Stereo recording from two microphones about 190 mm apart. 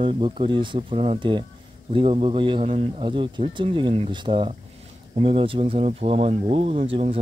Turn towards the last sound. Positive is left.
turn(degrees=-30)  # may be behind; listen again after turning